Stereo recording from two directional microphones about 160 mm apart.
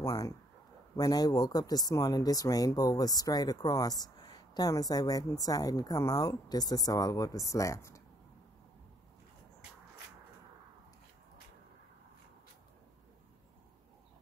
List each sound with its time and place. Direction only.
0.0 s speech: 20° left (ahead or behind)